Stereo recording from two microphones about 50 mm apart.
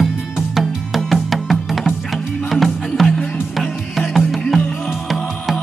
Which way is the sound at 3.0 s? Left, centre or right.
Centre.